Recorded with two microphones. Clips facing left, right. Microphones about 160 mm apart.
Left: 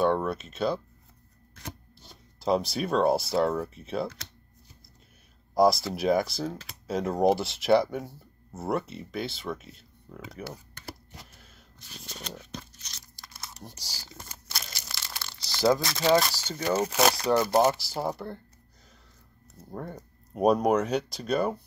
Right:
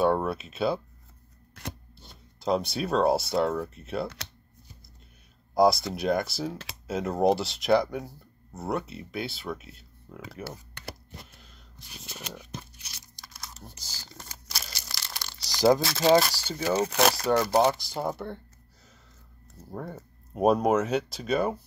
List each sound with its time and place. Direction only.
0.0 s speech: 5° right (ahead or behind)
1.5 s a sound: 65° right (ahead or behind)
2.4 s speech: centre (ahead or behind)
5.5 s speech: centre (ahead or behind)
11.3 s tearing: centre (ahead or behind)
13.6 s a sound: 15° left (ahead or behind)
14.1 s crumpling: centre (ahead or behind)
15.3 s crumpling: 10° right (ahead or behind)
15.8 s speech: 5° right (ahead or behind)
19.7 s speech: centre (ahead or behind)